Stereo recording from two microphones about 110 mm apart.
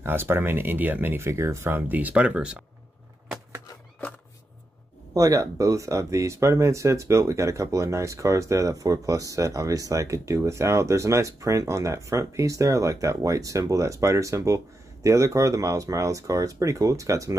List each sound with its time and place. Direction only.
0.0 s speech: 20° right (ahead or behind)
5.1 s speech: 30° right (ahead or behind)